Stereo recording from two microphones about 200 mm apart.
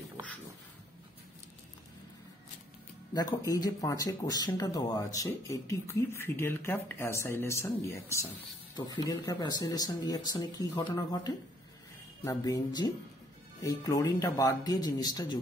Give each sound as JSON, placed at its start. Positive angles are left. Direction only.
{"t": 3.2, "sound": "speech", "side_deg": 15}